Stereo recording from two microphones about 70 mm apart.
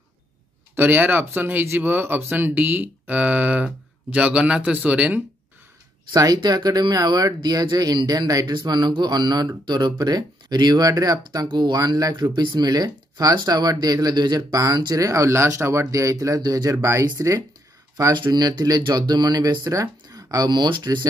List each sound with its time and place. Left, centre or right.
0.7 s speech: right
6.1 s speech: right
9.9 s speech: right
17.0 s speech: right
18.1 s speech: right